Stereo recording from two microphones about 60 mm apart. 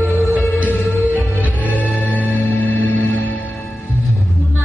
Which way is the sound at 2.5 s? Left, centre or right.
Left.